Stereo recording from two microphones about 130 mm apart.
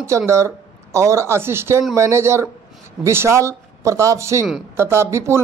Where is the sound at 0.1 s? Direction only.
25° right (ahead or behind).